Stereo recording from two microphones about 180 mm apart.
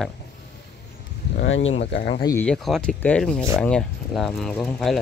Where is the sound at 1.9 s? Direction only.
45° left (ahead or behind).